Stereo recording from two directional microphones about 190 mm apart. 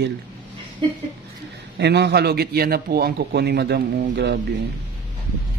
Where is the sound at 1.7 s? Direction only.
60° right (ahead or behind).